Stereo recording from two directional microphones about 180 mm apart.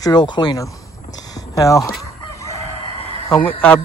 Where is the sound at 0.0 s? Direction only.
25° left (ahead or behind).